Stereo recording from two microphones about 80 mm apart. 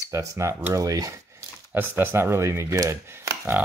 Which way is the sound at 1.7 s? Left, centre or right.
Right.